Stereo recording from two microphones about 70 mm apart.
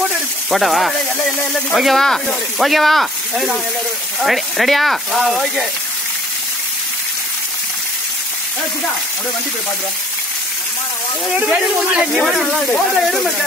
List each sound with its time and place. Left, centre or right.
0.5 s speech: centre
11.3 s speech: centre
12.2 s speech: centre